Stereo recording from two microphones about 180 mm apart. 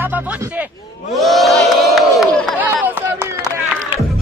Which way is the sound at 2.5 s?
10° right (ahead or behind).